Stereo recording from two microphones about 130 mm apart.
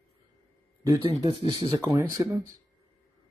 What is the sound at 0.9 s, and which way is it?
Speech, 30° right (ahead or behind).